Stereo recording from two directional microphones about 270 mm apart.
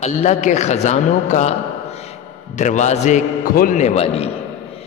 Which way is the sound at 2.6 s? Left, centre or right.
Left.